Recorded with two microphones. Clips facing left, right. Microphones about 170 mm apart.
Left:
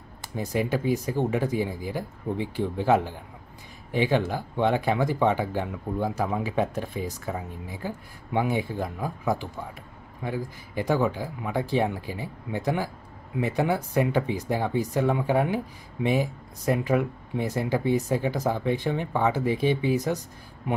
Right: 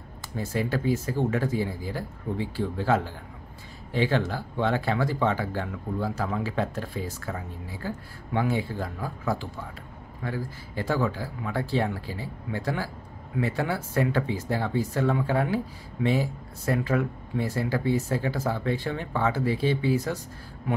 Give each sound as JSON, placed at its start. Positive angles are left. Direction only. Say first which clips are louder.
{"t": 0.4, "sound": "speech", "louder": "left 2 dB", "side_deg": 15}